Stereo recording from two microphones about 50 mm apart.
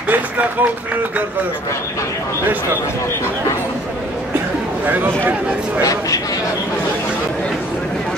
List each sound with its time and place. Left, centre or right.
0.1 s music: right
4.8 s speech: right